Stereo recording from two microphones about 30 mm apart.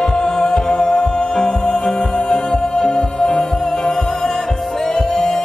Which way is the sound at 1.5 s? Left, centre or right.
Left.